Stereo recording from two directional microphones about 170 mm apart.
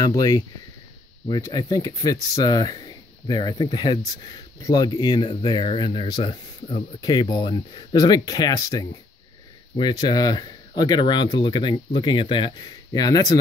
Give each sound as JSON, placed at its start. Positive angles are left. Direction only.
{"t": 0.0, "sound": "speech", "side_deg": 20}